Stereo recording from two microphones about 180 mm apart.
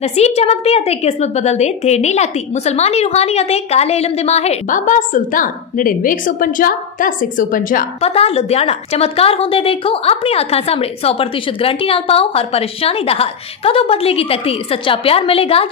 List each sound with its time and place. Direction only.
0.0 s a woman's voice: 35° left (ahead or behind)
8.0 s a woman's voice: 35° left (ahead or behind)